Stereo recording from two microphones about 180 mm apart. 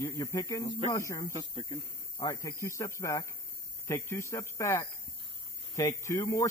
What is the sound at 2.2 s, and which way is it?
Speech, 20° left (ahead or behind).